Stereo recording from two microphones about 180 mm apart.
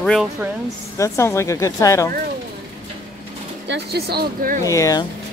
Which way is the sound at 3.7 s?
65° right (ahead or behind).